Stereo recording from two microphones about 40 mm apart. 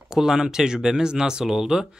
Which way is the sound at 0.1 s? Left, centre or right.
Centre.